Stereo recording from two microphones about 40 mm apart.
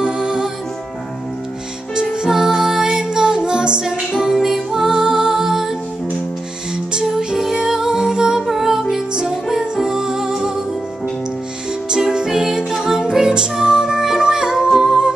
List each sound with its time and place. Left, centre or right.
0.0 s music: centre
2.2 s music: centre
4.2 s music: centre
6.9 s music: centre
9.1 s music: centre
9.5 s music: centre
12.1 s music: centre
14.7 s music: centre